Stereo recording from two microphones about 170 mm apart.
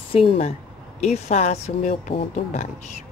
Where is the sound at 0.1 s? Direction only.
35° left (ahead or behind).